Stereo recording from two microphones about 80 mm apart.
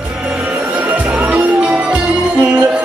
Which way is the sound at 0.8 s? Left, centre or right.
Right.